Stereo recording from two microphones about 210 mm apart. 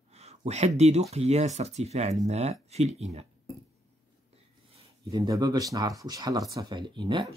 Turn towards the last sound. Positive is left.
turn(degrees=-20)  # may be behind; listen again after turning